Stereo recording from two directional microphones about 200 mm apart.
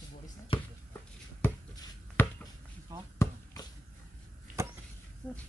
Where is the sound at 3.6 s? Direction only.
20° left (ahead or behind).